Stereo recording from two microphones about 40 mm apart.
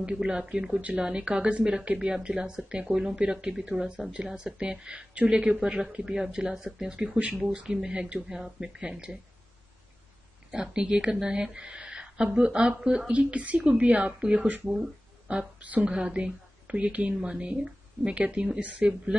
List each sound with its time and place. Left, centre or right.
0.0 s speech: right
4.0 s speech: centre; by 7.3 s right
7.6 s speech: centre
10.5 s speech: right
14.7 s a sound: right
15.6 s speech: right
15.9 s speech: right